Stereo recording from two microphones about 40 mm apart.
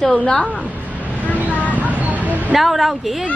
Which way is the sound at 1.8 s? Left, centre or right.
Right.